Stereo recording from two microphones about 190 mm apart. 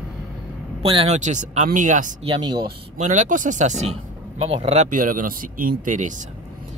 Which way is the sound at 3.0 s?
40° right (ahead or behind).